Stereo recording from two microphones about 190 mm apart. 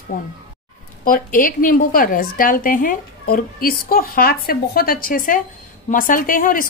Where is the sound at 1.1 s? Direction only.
45° left (ahead or behind).